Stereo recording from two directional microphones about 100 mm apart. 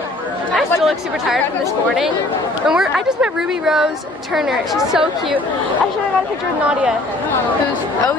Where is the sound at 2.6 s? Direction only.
5° right (ahead or behind).